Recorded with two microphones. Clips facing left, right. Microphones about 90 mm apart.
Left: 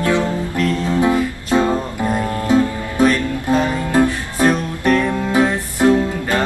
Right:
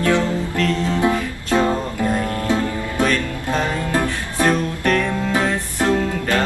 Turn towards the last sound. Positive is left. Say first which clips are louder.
# left 2 dB
turn(degrees=20)  # may be behind; listen again after turning